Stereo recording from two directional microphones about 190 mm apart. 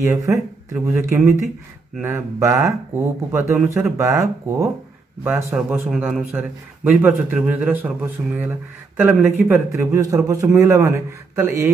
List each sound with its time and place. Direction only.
0.0 s a man's voice: 15° right (ahead or behind)